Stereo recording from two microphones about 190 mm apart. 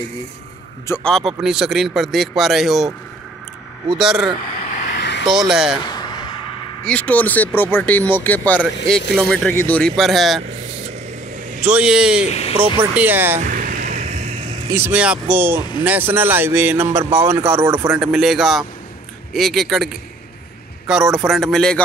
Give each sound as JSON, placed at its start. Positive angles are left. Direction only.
{"t": 0.8, "sound": "speech", "side_deg": 10}
{"t": 1.1, "sound": "speech", "side_deg": 0}
{"t": 4.0, "sound": "speech", "side_deg": 0}
{"t": 4.9, "sound": "vehicle", "side_deg": 60}
{"t": 5.2, "sound": "speech", "side_deg": 0}
{"t": 5.9, "sound": "a sound", "side_deg": 20}
{"t": 6.8, "sound": "speech", "side_deg": 5}
{"t": 11.6, "sound": "speech", "side_deg": -5}
{"t": 12.3, "sound": "speech", "side_deg": 30}
{"t": 12.9, "sound": "speech", "side_deg": -10}
{"t": 13.5, "sound": "vehicle", "side_deg": -45}
{"t": 14.7, "sound": "speech", "side_deg": -10}